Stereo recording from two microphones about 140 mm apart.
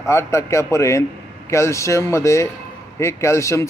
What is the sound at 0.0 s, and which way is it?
Speech, 20° left (ahead or behind).